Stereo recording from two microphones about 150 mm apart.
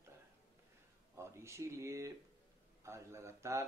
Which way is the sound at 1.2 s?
20° right (ahead or behind).